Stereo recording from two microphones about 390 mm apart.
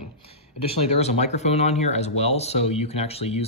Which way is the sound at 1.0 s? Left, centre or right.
Centre.